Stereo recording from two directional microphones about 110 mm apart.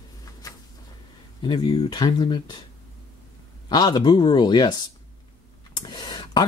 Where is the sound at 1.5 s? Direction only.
45° left (ahead or behind).